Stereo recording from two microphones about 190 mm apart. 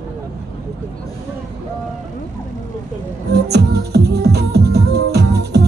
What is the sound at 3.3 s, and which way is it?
Music, 60° right (ahead or behind).